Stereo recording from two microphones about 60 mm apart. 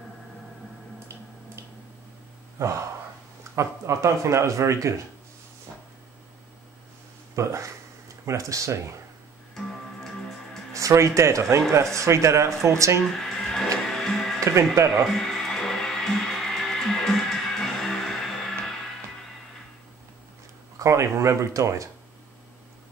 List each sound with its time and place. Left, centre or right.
0.9 s tick-tock: right
2.6 s speech: right
7.4 s speech: right
10.7 s speech: right
13.1 s music: centre
20.8 s speech: right